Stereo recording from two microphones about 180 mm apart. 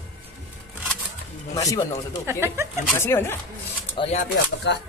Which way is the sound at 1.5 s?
20° left (ahead or behind).